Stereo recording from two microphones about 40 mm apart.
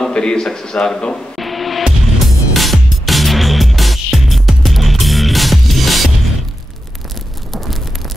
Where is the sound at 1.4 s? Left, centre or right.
Centre.